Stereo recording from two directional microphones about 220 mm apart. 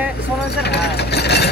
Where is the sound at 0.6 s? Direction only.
50° left (ahead or behind).